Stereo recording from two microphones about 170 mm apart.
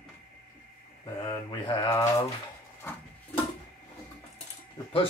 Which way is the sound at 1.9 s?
20° left (ahead or behind).